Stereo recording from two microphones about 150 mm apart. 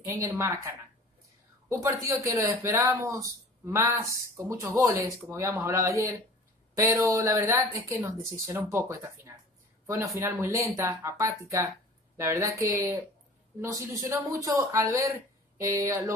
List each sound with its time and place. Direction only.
0.0 s speech: 20° right (ahead or behind)